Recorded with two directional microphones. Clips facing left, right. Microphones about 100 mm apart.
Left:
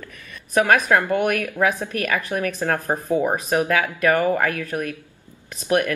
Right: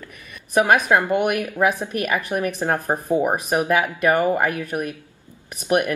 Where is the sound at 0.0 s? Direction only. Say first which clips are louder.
Left 1 dB; 15° right (ahead or behind).